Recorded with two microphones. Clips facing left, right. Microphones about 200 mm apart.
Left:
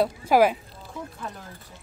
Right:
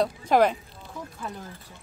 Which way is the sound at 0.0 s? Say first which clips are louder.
Left 2 dB; 5° left (ahead or behind).